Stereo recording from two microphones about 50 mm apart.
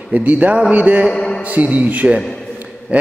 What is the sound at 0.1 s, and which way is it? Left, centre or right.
A man's voice, right.